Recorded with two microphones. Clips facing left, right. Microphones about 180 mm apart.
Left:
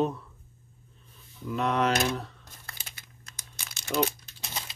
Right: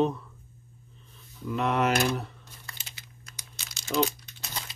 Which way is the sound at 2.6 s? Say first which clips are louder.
Left 1 dB; 50° left (ahead or behind).